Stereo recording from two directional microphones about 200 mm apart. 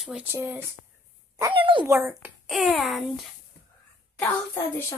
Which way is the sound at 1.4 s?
25° right (ahead or behind).